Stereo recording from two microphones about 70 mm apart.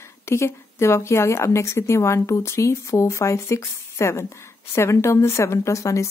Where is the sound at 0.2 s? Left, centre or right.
Left.